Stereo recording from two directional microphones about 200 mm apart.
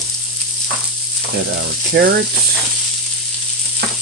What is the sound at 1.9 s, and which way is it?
Frying, 55° right (ahead or behind).